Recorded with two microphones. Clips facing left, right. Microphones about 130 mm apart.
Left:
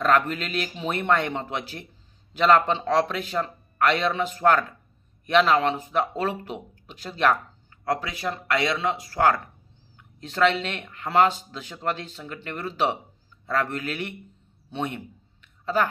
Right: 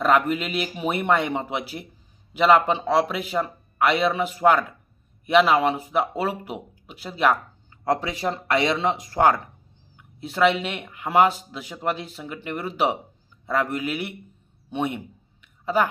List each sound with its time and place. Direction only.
0.0 s a man's voice: 10° right (ahead or behind)
7.8 s a man's voice: 25° right (ahead or behind)
14.7 s a sound: 10° right (ahead or behind)